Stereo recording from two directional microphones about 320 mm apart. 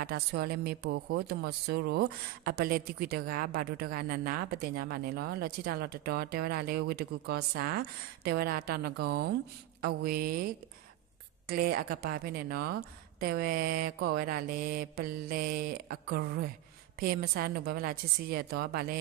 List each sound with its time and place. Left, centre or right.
0.0 s speech: right